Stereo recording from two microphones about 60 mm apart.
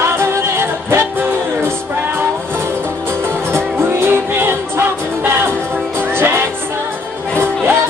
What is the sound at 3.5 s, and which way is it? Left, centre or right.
Music, right.